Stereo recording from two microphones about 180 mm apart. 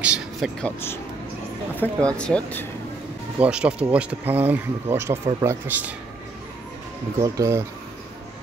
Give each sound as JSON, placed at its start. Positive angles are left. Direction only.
{"t": 0.0, "sound": "a sound", "side_deg": -5}
{"t": 0.6, "sound": "speech", "side_deg": 10}
{"t": 3.3, "sound": "speech", "side_deg": -5}
{"t": 7.2, "sound": "speech", "side_deg": -15}